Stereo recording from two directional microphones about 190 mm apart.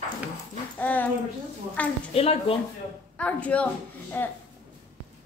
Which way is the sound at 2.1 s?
30° left (ahead or behind).